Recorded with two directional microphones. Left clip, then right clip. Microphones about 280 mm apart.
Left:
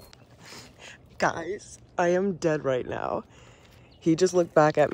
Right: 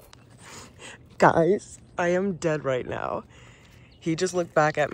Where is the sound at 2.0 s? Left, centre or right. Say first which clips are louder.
Left 1 dB; centre.